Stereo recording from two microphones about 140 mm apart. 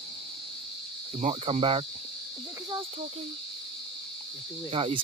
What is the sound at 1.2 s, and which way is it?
Cricket, 45° right (ahead or behind).